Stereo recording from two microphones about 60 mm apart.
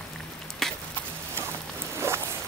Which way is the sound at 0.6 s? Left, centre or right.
Centre.